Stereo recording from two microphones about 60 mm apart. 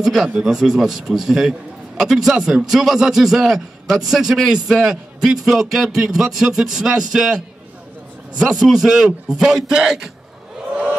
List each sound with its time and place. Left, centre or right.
0.0 s a man's voice: centre
8.4 s a man's voice: centre
10.7 s a sound: centre